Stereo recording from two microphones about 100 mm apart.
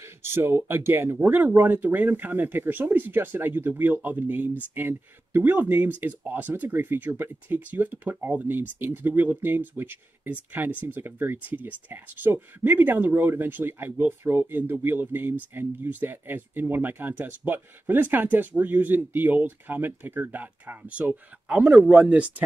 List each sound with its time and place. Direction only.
0.0 s speech: 25° right (ahead or behind)